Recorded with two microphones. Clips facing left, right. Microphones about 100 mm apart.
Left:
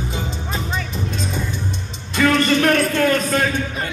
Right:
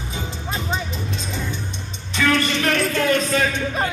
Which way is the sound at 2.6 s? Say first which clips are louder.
Left 4 dB; 50° left (ahead or behind).